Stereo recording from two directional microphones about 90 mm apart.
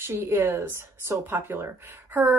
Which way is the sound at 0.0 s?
25° right (ahead or behind).